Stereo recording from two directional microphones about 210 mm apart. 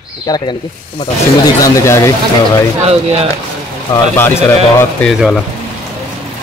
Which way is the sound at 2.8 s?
30° right (ahead or behind).